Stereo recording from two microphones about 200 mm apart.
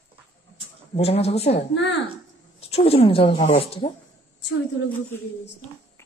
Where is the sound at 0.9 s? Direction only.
30° left (ahead or behind).